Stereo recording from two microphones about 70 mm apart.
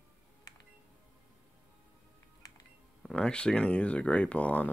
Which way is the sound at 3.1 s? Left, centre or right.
Centre.